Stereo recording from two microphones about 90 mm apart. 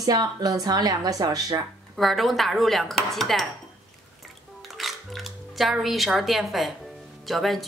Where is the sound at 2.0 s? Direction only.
Centre (ahead or behind).